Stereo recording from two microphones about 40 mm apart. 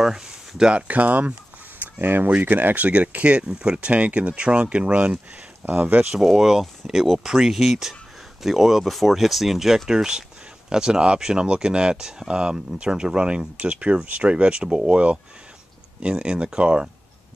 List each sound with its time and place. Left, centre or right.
0.0 s a sound: centre
0.8 s speech: right
2.0 s speech: right
2.2 s speech: right
3.3 s speech: right
3.9 s speech: right
5.7 s speech: right
6.1 s speech: centre; by 16.9 s right